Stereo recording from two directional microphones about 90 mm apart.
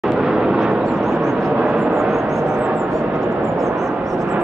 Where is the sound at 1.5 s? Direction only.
10° right (ahead or behind).